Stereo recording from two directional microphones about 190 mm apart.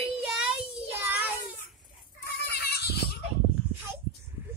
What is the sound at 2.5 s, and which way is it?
Goat, 60° left (ahead or behind).